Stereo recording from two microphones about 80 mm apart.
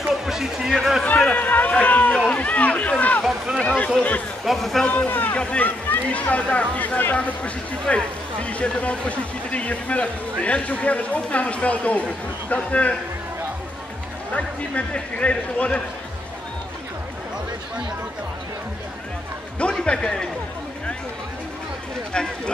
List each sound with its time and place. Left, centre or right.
0.1 s music: centre
1.3 s speech: left
2.1 s run: centre
3.3 s a sound: centre
3.6 s speech: centre
4.5 s speech: centre
4.8 s speech: left
14.3 s speech: centre
19.8 s a man's voice: centre